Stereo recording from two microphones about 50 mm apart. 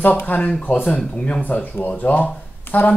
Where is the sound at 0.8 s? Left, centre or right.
Left.